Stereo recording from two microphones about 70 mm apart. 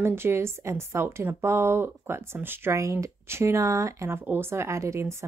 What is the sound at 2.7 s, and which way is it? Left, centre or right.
Speech, right.